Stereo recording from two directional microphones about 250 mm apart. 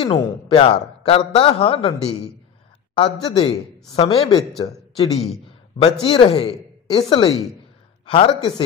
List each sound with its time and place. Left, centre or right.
0.0 s a man's voice: centre